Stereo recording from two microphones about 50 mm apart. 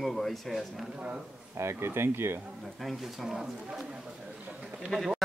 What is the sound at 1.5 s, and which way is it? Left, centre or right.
Speech, right.